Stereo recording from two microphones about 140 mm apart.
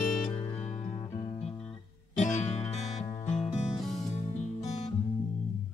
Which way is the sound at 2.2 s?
55° left (ahead or behind).